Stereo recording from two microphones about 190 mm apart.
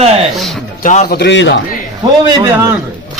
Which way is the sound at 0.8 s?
40° left (ahead or behind).